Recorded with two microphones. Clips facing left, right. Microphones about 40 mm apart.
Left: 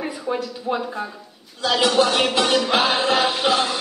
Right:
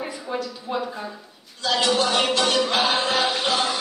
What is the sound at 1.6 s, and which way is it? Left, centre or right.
Music, centre.